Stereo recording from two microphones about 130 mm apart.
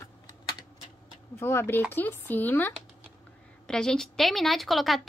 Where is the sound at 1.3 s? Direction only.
20° left (ahead or behind).